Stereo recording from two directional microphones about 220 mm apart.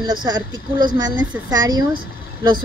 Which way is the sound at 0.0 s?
20° right (ahead or behind).